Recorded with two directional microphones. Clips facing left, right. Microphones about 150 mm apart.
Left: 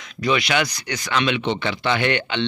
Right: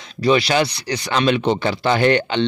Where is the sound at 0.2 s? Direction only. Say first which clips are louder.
Right 5 dB; 35° right (ahead or behind).